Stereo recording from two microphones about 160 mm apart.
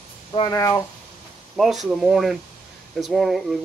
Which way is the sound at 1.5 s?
Centre (ahead or behind).